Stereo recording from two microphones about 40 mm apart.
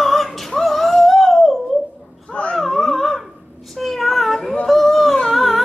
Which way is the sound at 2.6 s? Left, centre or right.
Centre.